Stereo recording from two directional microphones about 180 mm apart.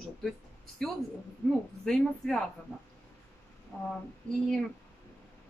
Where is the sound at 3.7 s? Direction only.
Centre (ahead or behind).